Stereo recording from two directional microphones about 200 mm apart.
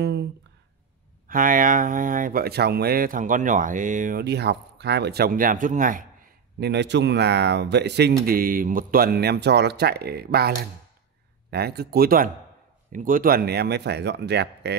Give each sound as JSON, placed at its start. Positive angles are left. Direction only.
{"t": 1.2, "sound": "speech", "side_deg": -45}
{"t": 8.3, "sound": "speech", "side_deg": -45}